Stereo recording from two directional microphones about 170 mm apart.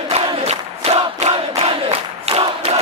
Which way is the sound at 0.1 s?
35° right (ahead or behind).